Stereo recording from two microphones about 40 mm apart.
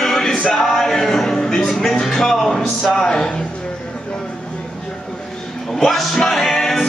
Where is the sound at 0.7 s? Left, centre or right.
Centre.